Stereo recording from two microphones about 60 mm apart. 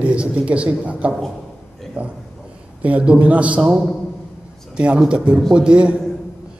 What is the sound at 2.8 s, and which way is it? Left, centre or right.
A man's voice, right.